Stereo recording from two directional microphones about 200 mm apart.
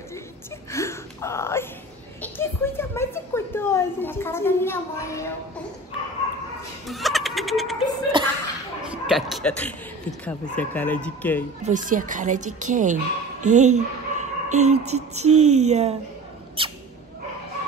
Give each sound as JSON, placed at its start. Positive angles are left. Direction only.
{"t": 0.7, "sound": "a child's voice", "side_deg": 15}
{"t": 6.9, "sound": "frog", "side_deg": 0}
{"t": 8.2, "sound": "chuckle", "side_deg": -25}
{"t": 8.9, "sound": "a child's voice", "side_deg": -5}
{"t": 11.6, "sound": "speech", "side_deg": -40}
{"t": 16.6, "sound": "a sound", "side_deg": -25}